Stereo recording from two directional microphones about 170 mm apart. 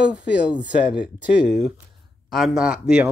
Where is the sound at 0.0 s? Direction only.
5° right (ahead or behind).